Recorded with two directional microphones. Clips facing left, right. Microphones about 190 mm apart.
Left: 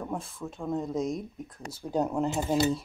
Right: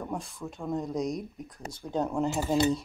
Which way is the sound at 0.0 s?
Centre (ahead or behind).